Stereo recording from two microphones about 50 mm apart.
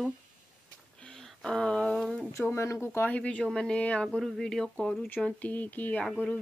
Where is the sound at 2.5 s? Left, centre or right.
Left.